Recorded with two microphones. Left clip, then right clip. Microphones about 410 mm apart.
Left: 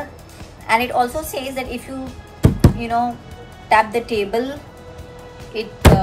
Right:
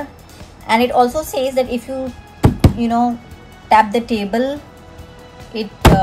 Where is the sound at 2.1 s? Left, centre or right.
Centre.